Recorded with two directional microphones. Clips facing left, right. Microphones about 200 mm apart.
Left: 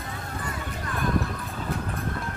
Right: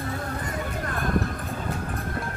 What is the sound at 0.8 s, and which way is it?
Music, 50° right (ahead or behind).